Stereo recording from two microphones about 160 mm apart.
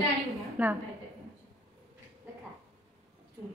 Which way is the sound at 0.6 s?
10° right (ahead or behind).